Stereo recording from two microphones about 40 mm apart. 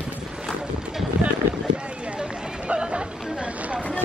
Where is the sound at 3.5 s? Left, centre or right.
Right.